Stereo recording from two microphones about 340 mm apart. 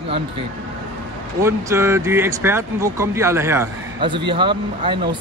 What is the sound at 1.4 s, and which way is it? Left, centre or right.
Speech, centre.